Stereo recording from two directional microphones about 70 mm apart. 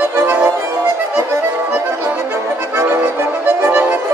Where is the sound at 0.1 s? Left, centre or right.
Right.